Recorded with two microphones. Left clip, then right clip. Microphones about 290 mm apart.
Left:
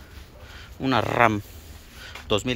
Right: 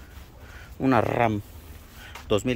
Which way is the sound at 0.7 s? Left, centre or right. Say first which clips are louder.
Left 1 dB; centre.